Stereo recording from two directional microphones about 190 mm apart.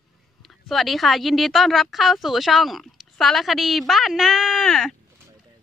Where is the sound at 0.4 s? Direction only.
Centre (ahead or behind).